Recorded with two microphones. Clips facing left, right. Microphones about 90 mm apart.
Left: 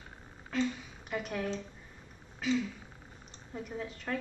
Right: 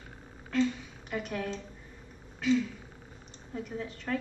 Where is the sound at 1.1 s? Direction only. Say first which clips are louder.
Even; centre (ahead or behind).